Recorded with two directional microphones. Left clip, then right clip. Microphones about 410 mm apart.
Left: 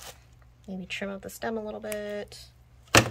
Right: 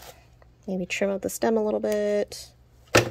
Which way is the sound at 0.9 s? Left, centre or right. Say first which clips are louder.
Right 8 dB; centre.